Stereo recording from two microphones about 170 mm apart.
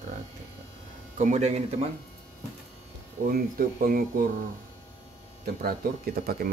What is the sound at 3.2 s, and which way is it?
Speech, 60° right (ahead or behind).